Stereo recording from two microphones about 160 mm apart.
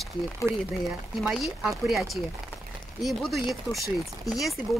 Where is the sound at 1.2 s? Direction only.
5° right (ahead or behind).